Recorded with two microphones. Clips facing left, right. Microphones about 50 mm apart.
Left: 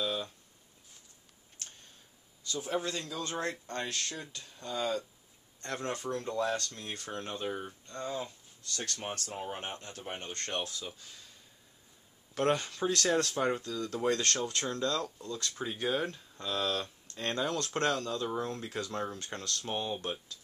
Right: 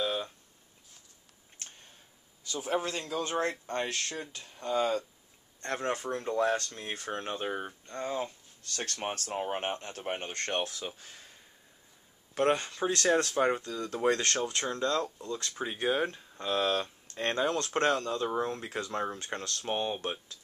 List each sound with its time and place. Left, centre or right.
0.0 s a sound: right
2.6 s speech: right
4.6 s speech: right
12.4 s speech: centre
16.8 s a sound: centre
17.4 s speech: right